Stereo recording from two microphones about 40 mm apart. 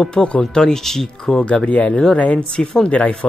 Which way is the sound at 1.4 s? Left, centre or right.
Left.